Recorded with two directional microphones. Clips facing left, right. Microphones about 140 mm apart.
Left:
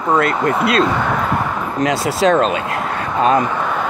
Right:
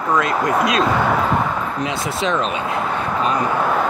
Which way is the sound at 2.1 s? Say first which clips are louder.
Left 7 dB; 40° left (ahead or behind).